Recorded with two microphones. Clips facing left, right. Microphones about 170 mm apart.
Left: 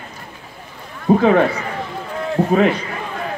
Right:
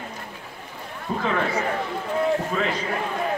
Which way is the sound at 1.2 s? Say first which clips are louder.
Left 10 dB; 65° left (ahead or behind).